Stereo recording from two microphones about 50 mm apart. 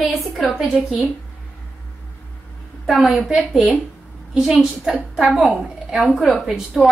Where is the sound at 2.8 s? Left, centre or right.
Centre.